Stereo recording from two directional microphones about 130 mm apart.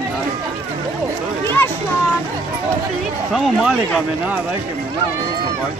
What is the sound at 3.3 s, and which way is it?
Speech, centre (ahead or behind).